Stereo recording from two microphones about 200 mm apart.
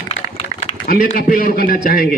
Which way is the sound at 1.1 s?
45° left (ahead or behind).